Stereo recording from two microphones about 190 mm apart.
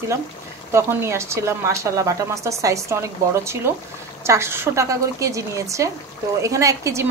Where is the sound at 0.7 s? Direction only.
15° right (ahead or behind).